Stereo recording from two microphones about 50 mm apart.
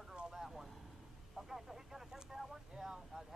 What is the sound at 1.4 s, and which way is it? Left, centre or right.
Speech, centre.